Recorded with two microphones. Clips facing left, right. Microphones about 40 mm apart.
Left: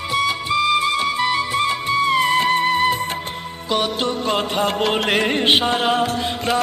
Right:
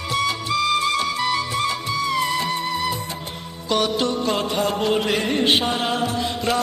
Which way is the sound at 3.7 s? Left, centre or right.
Left.